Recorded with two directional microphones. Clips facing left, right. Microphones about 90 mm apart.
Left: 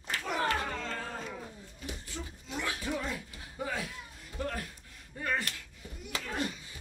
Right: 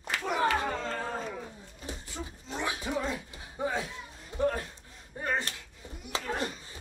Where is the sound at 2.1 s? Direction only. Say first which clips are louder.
Right 3 dB; 20° right (ahead or behind).